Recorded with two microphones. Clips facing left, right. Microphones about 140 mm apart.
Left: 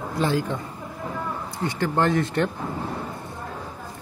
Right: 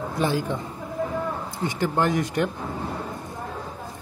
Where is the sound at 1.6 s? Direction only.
15° right (ahead or behind).